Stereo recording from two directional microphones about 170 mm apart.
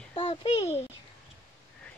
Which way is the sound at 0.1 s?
30° left (ahead or behind).